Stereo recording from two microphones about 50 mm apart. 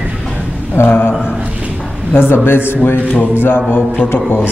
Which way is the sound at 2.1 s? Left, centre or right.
Left.